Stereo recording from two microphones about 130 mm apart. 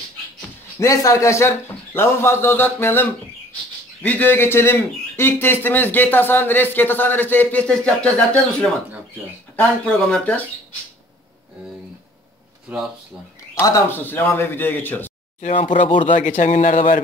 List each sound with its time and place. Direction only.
0.7 s a man's voice: 25° left (ahead or behind); by 8.7 s 10° left (ahead or behind)
9.9 s speech: 5° left (ahead or behind)
12.7 s speech: 10° right (ahead or behind)
13.6 s speech: 20° left (ahead or behind)
15.6 s speech: 80° left